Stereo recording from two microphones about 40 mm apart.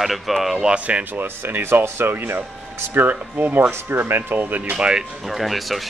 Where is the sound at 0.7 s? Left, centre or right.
Right.